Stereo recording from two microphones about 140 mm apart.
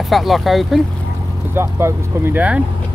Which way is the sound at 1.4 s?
15° right (ahead or behind).